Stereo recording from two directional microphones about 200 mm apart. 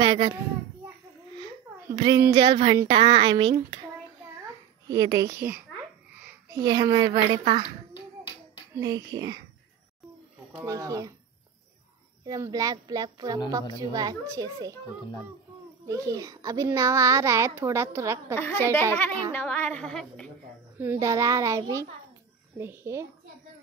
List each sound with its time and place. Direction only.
0.0 s a sound: 25° right (ahead or behind)
2.0 s speech: 25° right (ahead or behind)
4.8 s a child's voice: 20° right (ahead or behind)
7.9 s finger snapping: 10° right (ahead or behind)
10.5 s a child's voice: 15° right (ahead or behind)
12.3 s a child's voice: 20° right (ahead or behind)
15.9 s a child's voice: 15° right (ahead or behind)
18.3 s a woman's voice: 10° left (ahead or behind)
20.8 s a child's voice: 10° right (ahead or behind)